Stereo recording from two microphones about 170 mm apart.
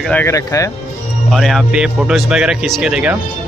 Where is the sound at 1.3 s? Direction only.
Centre (ahead or behind).